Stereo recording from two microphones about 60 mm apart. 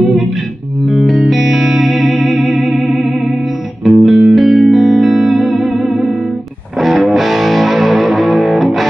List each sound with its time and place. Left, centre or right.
0.8 s music: centre